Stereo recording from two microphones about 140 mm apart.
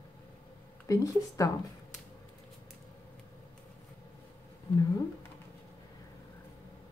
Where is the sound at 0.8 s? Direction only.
25° left (ahead or behind).